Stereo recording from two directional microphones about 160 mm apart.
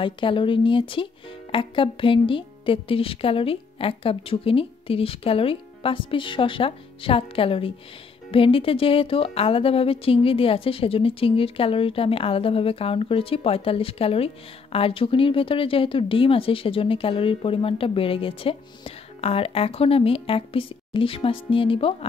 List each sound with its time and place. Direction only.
0.0 s speech: 30° left (ahead or behind)